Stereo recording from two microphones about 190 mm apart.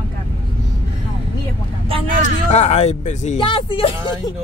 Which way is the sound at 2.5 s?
35° left (ahead or behind).